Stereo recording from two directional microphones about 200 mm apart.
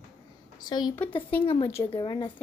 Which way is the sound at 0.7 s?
20° left (ahead or behind).